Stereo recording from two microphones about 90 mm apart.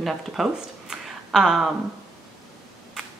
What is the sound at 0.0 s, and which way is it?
Speech, 5° right (ahead or behind).